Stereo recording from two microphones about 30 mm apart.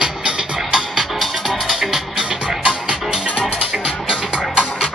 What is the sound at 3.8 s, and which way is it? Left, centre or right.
Music, right.